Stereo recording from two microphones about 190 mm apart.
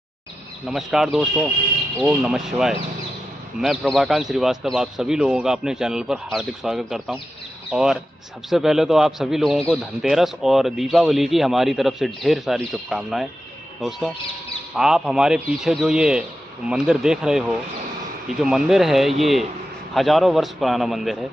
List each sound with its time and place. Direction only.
0.7 s a man's voice: 5° right (ahead or behind)
3.8 s a man's voice: centre (ahead or behind)